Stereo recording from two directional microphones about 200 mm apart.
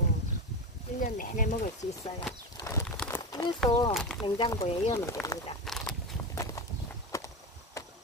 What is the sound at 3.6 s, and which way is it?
Speech, 25° left (ahead or behind).